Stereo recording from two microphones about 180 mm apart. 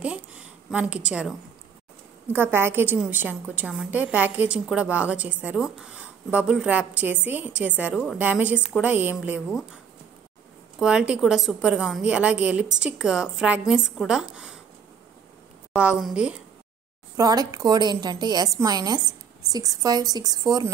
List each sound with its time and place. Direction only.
0.0 s a sound: 5° right (ahead or behind)
2.3 s a woman's voice: 10° right (ahead or behind)
10.8 s speech: 5° right (ahead or behind)
15.7 s speech: 5° right (ahead or behind)
17.2 s a woman's voice: 20° right (ahead or behind)